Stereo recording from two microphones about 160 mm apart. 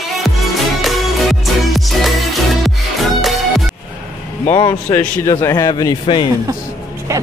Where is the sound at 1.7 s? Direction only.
Centre (ahead or behind).